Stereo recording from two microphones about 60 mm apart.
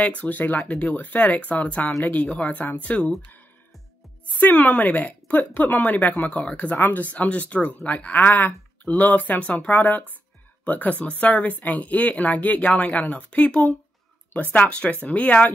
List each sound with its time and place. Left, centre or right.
0.2 s a woman's voice: left
4.4 s a woman's voice: left
14.6 s a woman's voice: centre